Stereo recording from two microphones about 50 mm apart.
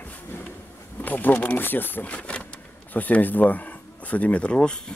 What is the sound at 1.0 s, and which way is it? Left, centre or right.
Speech, left.